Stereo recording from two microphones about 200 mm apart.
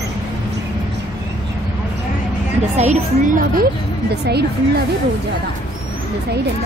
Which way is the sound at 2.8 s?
35° right (ahead or behind).